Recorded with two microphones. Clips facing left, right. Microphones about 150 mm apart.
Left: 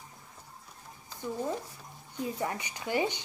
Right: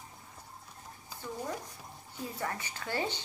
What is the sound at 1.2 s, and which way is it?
Speech, 10° left (ahead or behind).